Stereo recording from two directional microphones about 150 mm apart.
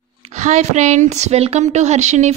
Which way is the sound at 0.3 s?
50° right (ahead or behind).